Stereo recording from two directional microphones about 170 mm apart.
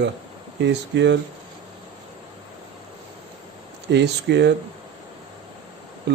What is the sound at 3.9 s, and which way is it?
Speech, 85° right.